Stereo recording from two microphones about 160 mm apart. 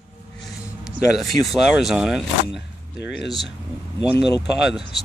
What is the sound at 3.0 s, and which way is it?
Speech, 90° left.